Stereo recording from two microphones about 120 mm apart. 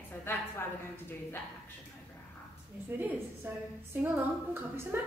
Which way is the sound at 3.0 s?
15° right (ahead or behind).